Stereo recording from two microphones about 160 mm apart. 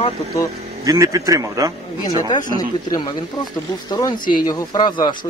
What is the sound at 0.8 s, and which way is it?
Speech, 20° right (ahead or behind).